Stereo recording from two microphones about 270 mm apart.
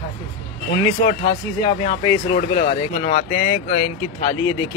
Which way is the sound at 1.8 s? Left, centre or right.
Centre.